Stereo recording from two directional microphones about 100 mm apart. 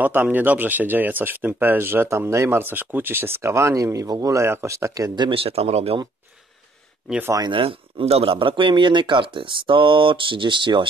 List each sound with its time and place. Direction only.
0.0 s speech: 20° right (ahead or behind)
5.1 s speech: 50° right (ahead or behind)
5.4 s speech: 90° right
7.5 s speech: 80° right; by 10.9 s 50° right (ahead or behind)